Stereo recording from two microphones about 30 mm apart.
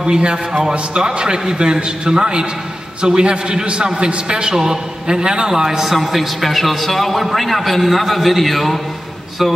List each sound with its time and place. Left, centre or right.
0.0 s a man's voice: right
5.5 s a man's voice: centre
5.9 s a man's voice: centre